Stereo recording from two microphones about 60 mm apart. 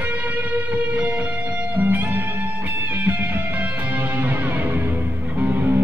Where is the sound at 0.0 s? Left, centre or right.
Right.